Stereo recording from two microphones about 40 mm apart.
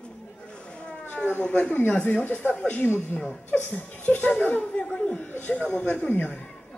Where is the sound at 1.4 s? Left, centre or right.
Left.